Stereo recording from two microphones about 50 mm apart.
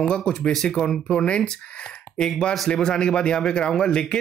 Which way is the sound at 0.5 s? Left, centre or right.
Centre.